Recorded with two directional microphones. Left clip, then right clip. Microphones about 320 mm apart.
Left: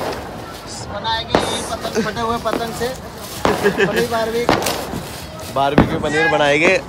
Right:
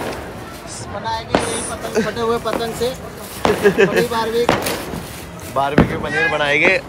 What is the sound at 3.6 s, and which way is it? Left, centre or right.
Speech, centre.